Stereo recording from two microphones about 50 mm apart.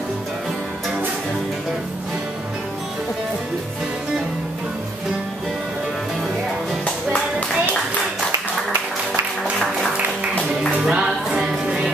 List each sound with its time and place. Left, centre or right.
10.3 s music: left
10.8 s music: centre